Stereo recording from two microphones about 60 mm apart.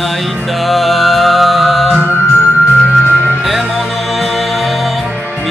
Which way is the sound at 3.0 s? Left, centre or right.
Left.